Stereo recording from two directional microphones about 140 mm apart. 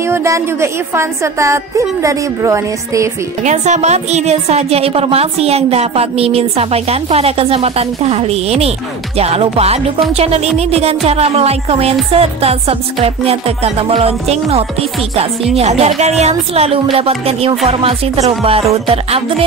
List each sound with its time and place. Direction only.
0.0 s speech: 20° right (ahead or behind)
3.4 s a woman's voice: 55° right (ahead or behind)